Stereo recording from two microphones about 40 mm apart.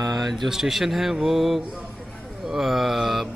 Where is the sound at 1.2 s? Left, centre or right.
Centre.